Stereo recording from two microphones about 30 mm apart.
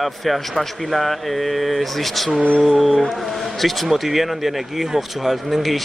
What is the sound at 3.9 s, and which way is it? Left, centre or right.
Speech, centre.